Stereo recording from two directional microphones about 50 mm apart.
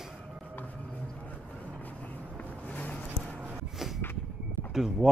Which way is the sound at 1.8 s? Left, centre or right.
Left.